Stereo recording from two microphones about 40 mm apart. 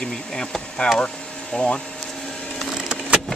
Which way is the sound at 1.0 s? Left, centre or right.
Centre.